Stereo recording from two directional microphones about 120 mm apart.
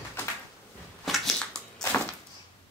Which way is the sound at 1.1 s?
Centre (ahead or behind).